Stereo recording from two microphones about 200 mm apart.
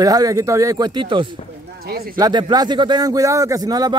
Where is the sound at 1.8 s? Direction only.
50° right (ahead or behind).